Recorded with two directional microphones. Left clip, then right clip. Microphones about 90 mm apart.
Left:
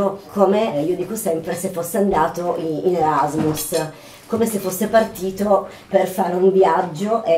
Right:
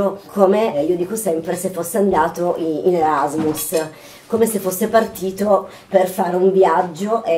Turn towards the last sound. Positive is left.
turn(degrees=-20)  # may be behind; listen again after turning